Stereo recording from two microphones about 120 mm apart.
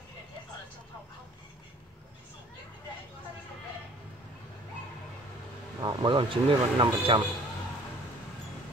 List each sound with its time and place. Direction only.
5.8 s speech: 40° right (ahead or behind)